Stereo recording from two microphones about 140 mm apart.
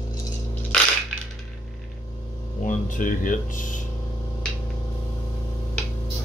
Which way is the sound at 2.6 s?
70° left (ahead or behind).